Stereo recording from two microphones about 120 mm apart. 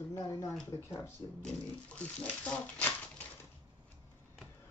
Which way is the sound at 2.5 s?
10° left (ahead or behind).